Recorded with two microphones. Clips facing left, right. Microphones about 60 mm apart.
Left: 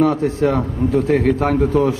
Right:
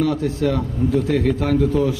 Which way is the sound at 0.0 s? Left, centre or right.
Left.